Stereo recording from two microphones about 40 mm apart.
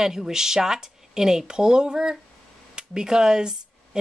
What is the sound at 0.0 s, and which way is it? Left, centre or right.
Speech, centre.